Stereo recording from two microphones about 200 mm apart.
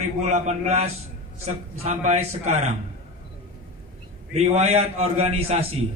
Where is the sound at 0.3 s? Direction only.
35° right (ahead or behind).